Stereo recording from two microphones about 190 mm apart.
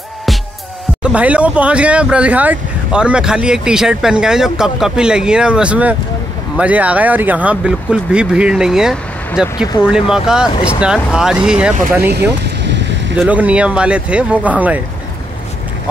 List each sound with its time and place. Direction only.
1.0 s speech: 5° right (ahead or behind)
12.1 s speech: 60° right (ahead or behind)
13.1 s speech: 10° right (ahead or behind)